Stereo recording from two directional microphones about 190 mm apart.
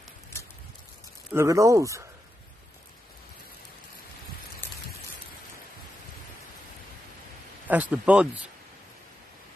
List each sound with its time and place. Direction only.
1.3 s speech: 15° right (ahead or behind)
4.6 s rain: 10° left (ahead or behind)
7.6 s speech: 10° right (ahead or behind)